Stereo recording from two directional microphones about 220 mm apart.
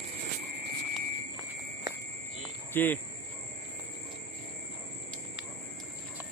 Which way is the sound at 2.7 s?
10° left (ahead or behind).